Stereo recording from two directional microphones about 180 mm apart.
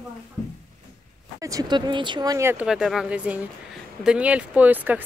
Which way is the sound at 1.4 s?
20° right (ahead or behind).